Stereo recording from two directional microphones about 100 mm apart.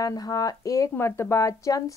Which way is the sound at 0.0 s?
40° left (ahead or behind).